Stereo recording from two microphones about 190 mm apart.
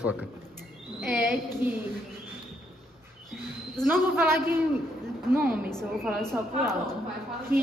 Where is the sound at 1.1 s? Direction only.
Centre (ahead or behind).